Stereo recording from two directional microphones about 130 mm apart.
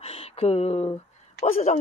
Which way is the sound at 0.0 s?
50° left (ahead or behind).